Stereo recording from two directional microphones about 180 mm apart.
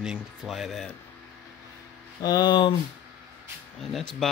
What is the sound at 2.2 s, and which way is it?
Speech, 20° left (ahead or behind).